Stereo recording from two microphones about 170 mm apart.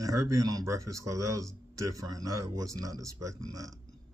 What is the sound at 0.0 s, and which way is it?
Speech, 20° right (ahead or behind).